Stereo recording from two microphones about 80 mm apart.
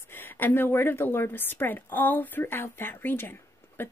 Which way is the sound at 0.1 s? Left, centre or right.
Left.